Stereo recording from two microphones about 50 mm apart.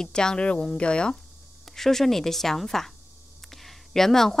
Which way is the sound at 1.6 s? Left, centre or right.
Centre.